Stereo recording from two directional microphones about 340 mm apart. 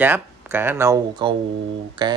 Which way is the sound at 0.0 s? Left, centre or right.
Centre.